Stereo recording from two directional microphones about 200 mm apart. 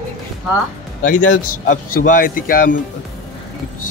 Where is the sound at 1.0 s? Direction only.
40° left (ahead or behind).